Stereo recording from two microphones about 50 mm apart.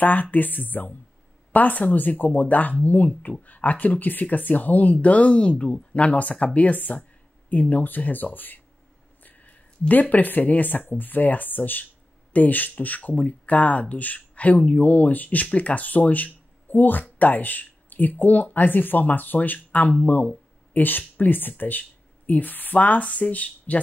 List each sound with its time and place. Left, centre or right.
0.0 s speech: left
9.2 s a sound: left
10.9 s speech: left